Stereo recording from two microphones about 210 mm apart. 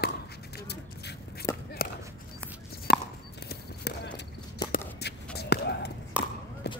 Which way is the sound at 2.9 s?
45° left (ahead or behind).